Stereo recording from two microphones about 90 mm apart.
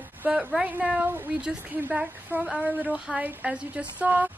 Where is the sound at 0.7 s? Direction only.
15° right (ahead or behind).